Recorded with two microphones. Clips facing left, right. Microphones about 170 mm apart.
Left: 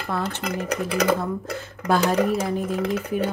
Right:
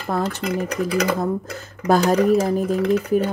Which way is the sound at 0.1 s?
40° right (ahead or behind).